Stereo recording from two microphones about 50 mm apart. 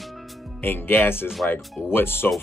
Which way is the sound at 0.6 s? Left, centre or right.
Left.